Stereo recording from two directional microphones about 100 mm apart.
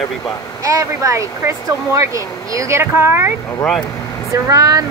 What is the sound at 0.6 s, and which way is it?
Speech, 30° right (ahead or behind).